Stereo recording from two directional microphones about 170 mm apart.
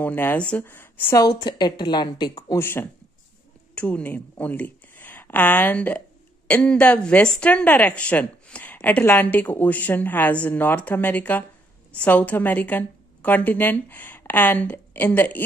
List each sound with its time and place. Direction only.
0.0 s speech: 10° left (ahead or behind)
1.2 s a woman's voice: 25° left (ahead or behind)
2.6 s speech: 10° left (ahead or behind)